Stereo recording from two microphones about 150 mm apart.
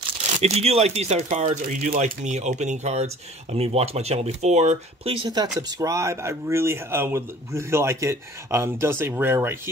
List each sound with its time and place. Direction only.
0.4 s speech: 45° right (ahead or behind)
5.6 s speech: 20° right (ahead or behind)